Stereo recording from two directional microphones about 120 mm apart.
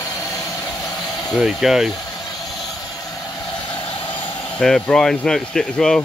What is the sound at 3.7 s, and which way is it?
Vehicle, 45° left (ahead or behind).